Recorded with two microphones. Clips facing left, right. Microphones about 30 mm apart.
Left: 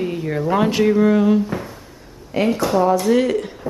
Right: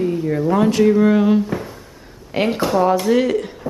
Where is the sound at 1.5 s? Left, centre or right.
Centre.